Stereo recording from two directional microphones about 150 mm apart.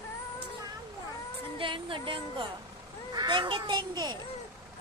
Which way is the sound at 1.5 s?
35° right (ahead or behind).